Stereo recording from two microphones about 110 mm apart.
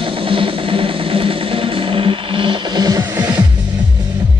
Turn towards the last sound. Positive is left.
turn(degrees=-30)  # may be behind; listen again after turning